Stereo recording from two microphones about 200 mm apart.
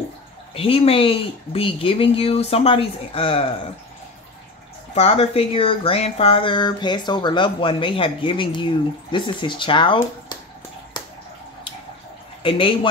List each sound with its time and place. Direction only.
0.6 s speech: 30° left (ahead or behind)
4.9 s speech: 30° left (ahead or behind)
12.4 s speech: 25° left (ahead or behind)